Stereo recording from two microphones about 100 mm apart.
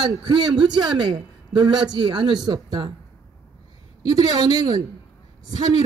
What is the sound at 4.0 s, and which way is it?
A woman's voice, 40° right (ahead or behind).